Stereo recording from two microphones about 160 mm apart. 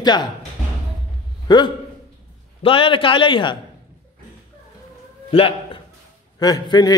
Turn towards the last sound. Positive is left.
turn(degrees=25)  # may be behind; listen again after turning